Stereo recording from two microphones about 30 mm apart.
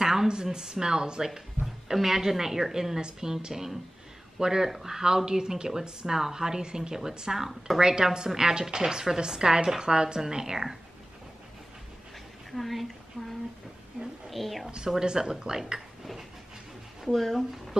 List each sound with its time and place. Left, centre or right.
0.0 s a sound: centre
0.3 s speech: right
1.2 s speech: centre
3.0 s speech: right
3.3 s speech: centre
7.3 s speech: centre
7.8 s speech: right
12.4 s speech: centre
14.3 s speech: centre
15.0 s speech: right
17.1 s speech: centre